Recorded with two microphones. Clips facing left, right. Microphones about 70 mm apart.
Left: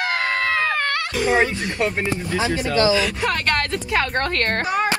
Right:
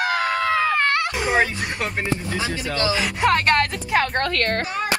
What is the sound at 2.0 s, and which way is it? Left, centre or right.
Speech, left.